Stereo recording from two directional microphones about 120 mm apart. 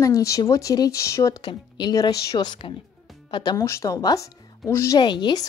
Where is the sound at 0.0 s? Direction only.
30° left (ahead or behind).